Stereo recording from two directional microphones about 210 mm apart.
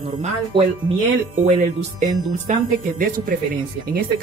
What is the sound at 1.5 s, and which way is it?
Speech, 35° right (ahead or behind).